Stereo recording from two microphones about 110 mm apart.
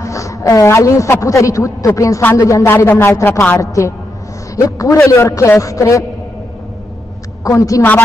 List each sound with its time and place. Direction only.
0.0 s a woman's voice: 30° left (ahead or behind)
7.4 s a woman's voice: 30° left (ahead or behind)